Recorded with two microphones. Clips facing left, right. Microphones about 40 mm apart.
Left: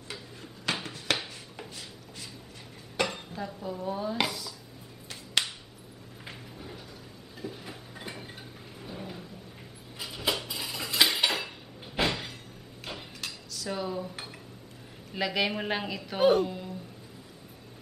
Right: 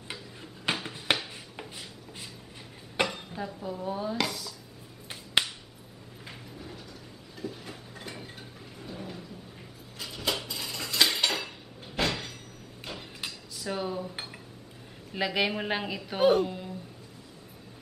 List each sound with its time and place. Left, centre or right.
0.1 s a sound: centre
3.0 s dishes: right
3.4 s a woman's voice: centre
4.3 s dishes: centre
5.4 s finger snapping: right
6.2 s a sound: centre
10.4 s dishes: centre
13.2 s dishes: centre
15.1 s a woman's voice: centre